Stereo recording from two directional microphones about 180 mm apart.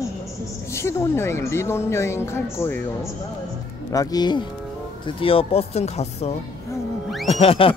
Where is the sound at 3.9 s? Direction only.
20° left (ahead or behind).